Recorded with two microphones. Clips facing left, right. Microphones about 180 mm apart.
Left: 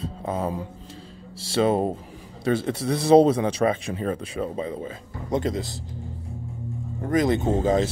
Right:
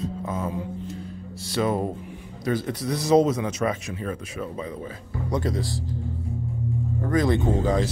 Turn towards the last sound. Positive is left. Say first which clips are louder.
# left 2 dB
turn(degrees=20)  # may be behind; listen again after turning